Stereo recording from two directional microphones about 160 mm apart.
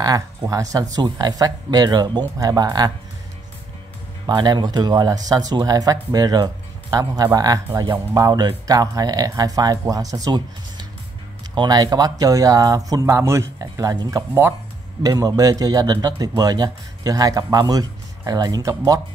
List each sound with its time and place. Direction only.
0.0 s speech: 25° right (ahead or behind)
4.3 s speech: 25° right (ahead or behind)